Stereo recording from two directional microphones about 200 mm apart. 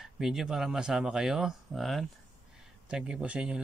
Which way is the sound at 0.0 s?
Centre (ahead or behind).